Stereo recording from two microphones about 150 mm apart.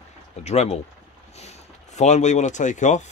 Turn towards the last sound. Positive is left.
turn(degrees=55)  # may be behind; listen again after turning